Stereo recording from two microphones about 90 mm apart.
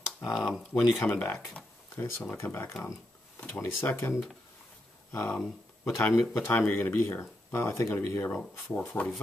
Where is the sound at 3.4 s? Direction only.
15° left (ahead or behind).